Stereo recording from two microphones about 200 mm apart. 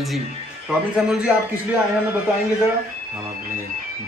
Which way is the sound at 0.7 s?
5° right (ahead or behind).